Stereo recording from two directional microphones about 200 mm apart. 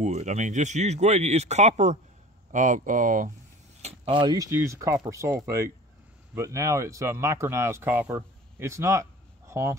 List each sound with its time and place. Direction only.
0.0 s speech: 35° right (ahead or behind)
3.8 s speech: 25° right (ahead or behind)